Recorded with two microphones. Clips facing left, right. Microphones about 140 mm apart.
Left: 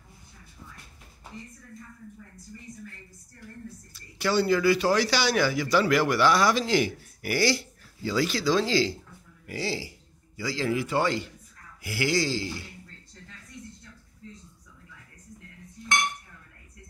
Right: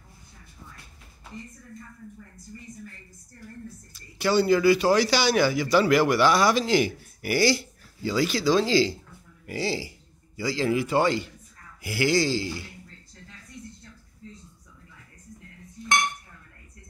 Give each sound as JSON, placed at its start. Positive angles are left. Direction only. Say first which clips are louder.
{"t": 4.2, "sound": "a man's voice", "louder": "right 3 dB", "side_deg": -15}